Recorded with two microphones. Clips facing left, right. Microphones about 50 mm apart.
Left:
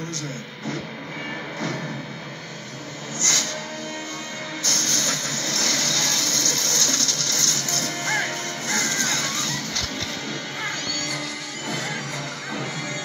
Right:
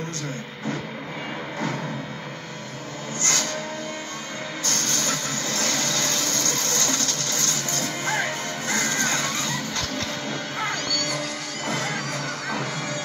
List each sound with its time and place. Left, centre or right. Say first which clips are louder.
3.2 s music: even; right
4.6 s vehicle: left 1 dB; right
10.6 s music: right 3 dB; right